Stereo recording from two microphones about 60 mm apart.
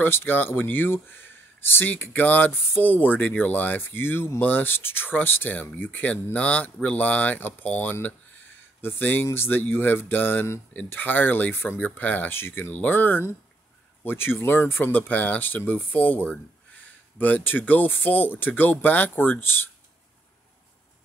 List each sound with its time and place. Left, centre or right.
0.0 s speech: left
12.4 s speech: left
12.7 s speech: left